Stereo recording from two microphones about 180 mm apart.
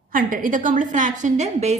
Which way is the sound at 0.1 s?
50° right (ahead or behind).